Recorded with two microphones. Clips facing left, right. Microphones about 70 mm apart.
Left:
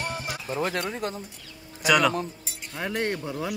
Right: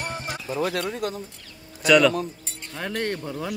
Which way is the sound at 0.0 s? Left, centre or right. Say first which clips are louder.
Right 1 dB; right.